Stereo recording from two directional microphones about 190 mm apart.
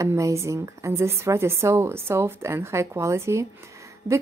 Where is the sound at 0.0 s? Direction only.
15° right (ahead or behind).